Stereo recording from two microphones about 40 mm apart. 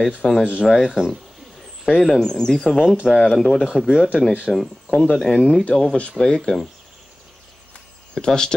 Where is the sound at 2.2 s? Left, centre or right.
Centre.